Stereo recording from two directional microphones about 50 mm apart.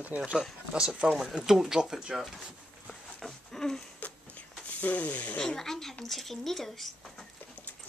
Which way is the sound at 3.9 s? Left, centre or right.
Left.